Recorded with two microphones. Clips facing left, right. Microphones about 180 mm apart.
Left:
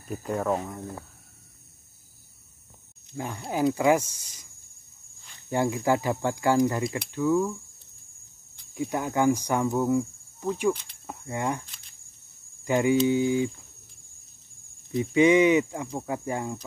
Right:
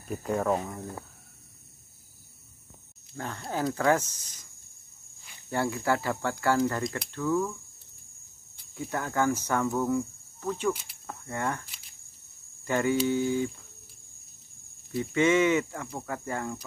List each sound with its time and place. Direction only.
0.1 s speech: centre (ahead or behind)
3.2 s speech: 10° left (ahead or behind)
5.5 s speech: 15° left (ahead or behind)
8.7 s speech: 15° left (ahead or behind)
10.7 s speech: 5° right (ahead or behind)
11.1 s speech: 15° left (ahead or behind)
12.6 s speech: 15° left (ahead or behind)
14.9 s speech: 15° left (ahead or behind)